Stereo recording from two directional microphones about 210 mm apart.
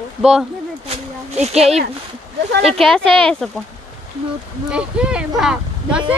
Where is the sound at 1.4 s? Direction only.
30° right (ahead or behind).